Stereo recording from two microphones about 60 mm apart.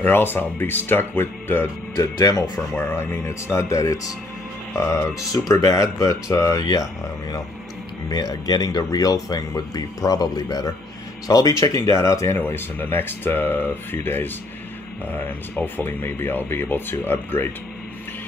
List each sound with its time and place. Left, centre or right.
0.0 s speech: left
2.0 s speech: left
2.9 s speech: left
5.5 s speech: left
12.4 s speech: left